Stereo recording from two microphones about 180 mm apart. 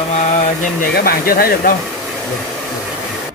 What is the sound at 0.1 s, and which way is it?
Speech, 45° left (ahead or behind).